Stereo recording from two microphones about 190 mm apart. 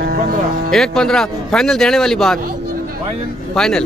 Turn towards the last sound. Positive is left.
turn(degrees=5)  # may be behind; listen again after turning